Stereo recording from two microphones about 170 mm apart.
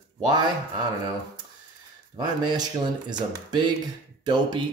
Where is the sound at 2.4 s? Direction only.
25° right (ahead or behind).